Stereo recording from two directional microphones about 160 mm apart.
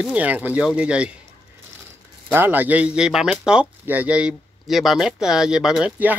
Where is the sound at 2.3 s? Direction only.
10° right (ahead or behind).